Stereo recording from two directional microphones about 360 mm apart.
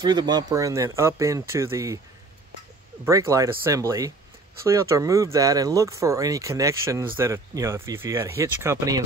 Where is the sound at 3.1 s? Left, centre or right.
Centre.